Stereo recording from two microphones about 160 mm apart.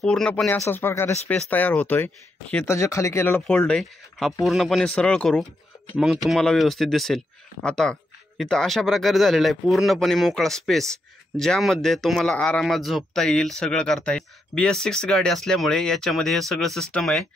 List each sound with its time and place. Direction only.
0.0 s speech: 5° left (ahead or behind)